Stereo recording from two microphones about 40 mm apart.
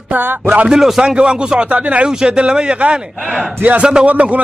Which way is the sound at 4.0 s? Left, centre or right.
Right.